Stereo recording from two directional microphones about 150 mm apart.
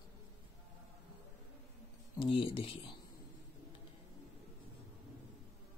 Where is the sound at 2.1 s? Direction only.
35° left (ahead or behind).